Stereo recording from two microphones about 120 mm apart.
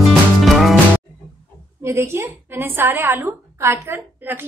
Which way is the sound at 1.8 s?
20° right (ahead or behind).